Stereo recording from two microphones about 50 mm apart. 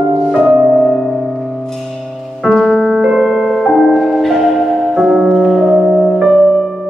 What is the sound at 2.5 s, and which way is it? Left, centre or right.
Music, centre.